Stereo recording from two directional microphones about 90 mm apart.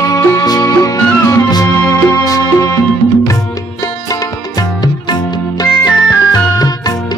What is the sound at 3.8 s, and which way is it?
Music, 40° left (ahead or behind).